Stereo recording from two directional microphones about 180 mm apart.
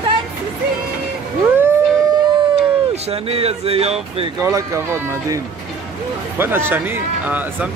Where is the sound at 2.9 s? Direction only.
35° right (ahead or behind).